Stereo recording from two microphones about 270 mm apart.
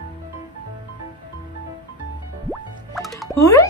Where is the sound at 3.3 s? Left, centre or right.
Centre.